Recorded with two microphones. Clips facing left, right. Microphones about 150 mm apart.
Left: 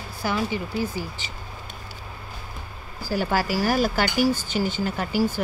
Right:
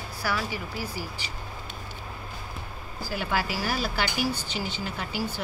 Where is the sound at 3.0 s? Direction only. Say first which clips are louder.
Left 5 dB; 40° left (ahead or behind).